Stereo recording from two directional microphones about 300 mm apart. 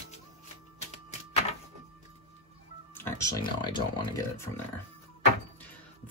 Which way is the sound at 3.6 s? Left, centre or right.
Centre.